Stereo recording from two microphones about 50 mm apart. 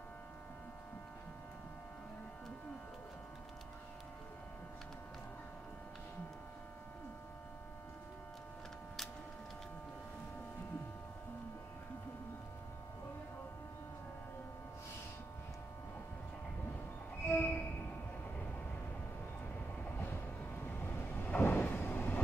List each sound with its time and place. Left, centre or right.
17.3 s train: left
20.8 s vehicle: left
21.7 s train: left